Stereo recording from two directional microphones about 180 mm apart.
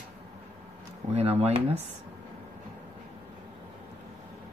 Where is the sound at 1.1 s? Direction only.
35° right (ahead or behind).